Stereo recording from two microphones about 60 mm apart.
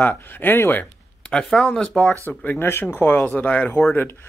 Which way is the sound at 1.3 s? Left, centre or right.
Centre.